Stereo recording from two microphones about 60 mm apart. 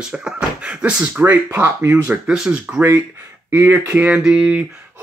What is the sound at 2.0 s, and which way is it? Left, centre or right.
Speech, centre.